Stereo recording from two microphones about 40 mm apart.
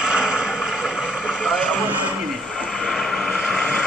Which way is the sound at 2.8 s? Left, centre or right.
Centre.